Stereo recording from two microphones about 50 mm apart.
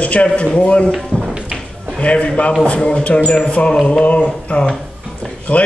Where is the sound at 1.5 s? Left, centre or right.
Left.